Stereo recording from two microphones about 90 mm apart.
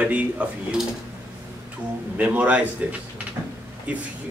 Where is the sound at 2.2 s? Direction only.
15° right (ahead or behind).